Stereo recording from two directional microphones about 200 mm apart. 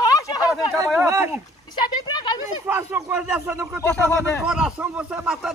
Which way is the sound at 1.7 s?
20° left (ahead or behind).